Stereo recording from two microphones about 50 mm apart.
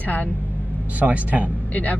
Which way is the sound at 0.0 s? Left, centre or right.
Left.